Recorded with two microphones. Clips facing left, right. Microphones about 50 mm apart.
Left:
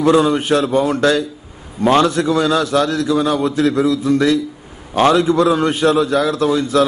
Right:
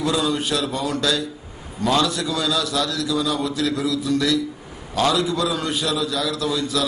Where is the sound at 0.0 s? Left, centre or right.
Left.